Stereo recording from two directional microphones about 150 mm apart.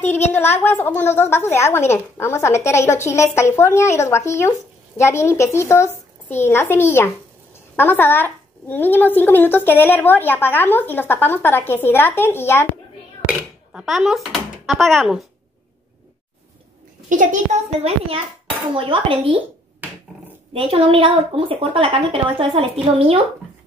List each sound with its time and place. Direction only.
0.3 s a woman's voice: 15° left (ahead or behind)
13.3 s speech: 5° right (ahead or behind)
17.1 s a child's voice: 60° right (ahead or behind); by 19.4 s 35° right (ahead or behind)
20.5 s a woman's voice: 40° right (ahead or behind)